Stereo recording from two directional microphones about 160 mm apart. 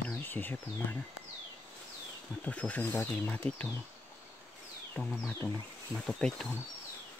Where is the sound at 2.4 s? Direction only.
10° left (ahead or behind).